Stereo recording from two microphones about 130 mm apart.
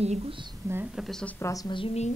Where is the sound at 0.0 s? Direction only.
50° right (ahead or behind).